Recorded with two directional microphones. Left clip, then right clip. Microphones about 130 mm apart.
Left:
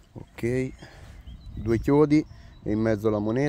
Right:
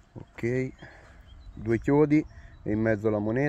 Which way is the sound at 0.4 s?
30° left (ahead or behind).